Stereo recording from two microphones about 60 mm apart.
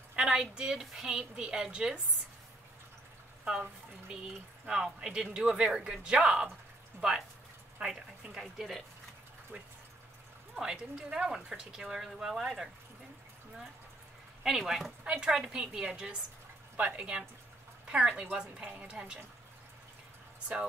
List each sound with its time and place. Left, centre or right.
0.1 s speech: centre
4.6 s speech: centre
9.5 s speech: centre
14.4 s speech: centre
15.0 s speech: centre